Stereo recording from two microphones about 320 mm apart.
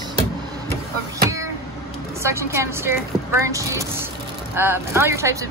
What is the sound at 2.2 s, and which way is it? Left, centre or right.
A woman's voice, centre.